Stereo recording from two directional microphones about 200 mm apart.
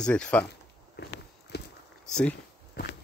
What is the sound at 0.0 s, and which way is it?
Speech, 5° left (ahead or behind).